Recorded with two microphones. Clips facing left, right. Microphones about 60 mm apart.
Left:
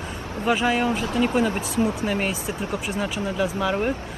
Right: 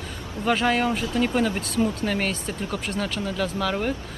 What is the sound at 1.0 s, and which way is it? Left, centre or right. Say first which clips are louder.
Speech: left 1 dB; left.